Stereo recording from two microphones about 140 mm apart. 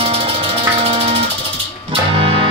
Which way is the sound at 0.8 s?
40° right (ahead or behind).